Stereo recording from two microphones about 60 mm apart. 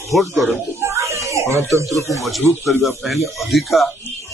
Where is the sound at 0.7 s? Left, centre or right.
Right.